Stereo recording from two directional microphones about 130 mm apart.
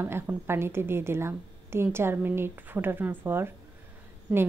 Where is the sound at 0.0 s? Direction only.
15° right (ahead or behind).